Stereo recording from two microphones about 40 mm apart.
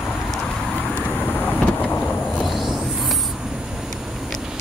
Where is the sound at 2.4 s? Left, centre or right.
Centre.